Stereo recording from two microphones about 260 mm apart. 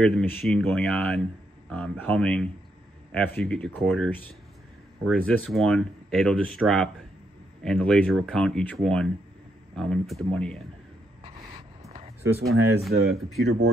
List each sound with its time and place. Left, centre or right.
0.0 s speech: centre
11.8 s a sound: right
12.2 s speech: right
12.4 s speech: centre